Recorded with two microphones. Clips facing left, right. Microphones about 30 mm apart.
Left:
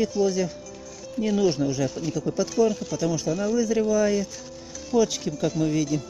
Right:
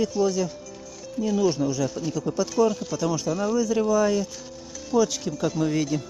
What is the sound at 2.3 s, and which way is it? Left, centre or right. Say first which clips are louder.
Speech: even; centre.